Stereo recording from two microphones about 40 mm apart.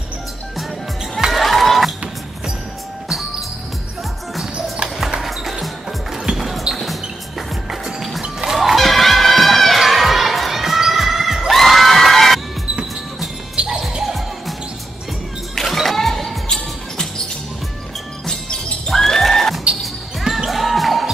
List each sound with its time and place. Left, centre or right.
1.3 s crowd: centre
3.1 s music: centre
5.2 s music: centre
6.3 s basketball bounce: centre
6.8 s music: centre
8.2 s music: centre
8.5 s crowd: centre
13.7 s basketball bounce: centre
15.5 s music: centre
18.2 s music: centre
19.8 s basketball bounce: centre